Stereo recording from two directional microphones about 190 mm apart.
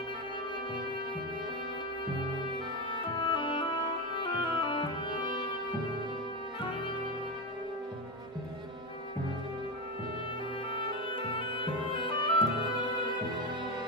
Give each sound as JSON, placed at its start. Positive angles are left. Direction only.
{"t": 2.9, "sound": "music", "side_deg": 25}
{"t": 11.1, "sound": "music", "side_deg": 25}